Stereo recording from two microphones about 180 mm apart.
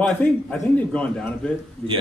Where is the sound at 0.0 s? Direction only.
10° left (ahead or behind).